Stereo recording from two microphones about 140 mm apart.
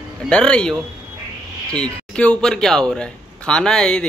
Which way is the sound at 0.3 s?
5° left (ahead or behind).